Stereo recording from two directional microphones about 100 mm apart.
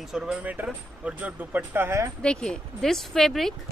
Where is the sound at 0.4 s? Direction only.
15° right (ahead or behind).